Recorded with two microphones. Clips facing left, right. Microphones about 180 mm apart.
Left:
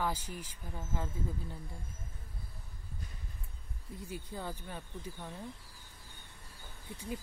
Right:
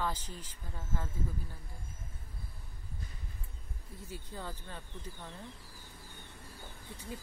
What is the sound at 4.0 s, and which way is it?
Speech, 15° left (ahead or behind).